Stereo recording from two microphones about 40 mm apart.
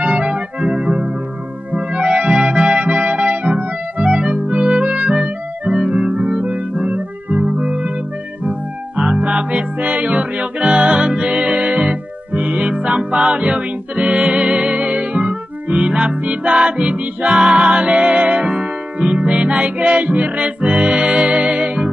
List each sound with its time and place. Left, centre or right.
0.0 s music: right
8.9 s music: right